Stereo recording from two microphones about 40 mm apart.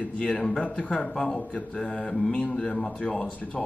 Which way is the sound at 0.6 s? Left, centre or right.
Left.